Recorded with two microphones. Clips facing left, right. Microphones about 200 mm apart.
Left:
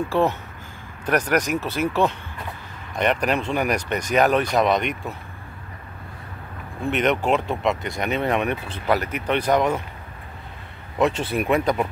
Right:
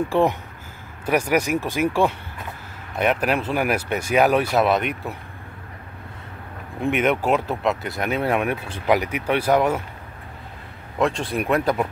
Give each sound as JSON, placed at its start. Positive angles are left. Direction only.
{"t": 0.1, "sound": "speech", "side_deg": -15}
{"t": 6.8, "sound": "speech", "side_deg": -10}
{"t": 11.0, "sound": "speech", "side_deg": 5}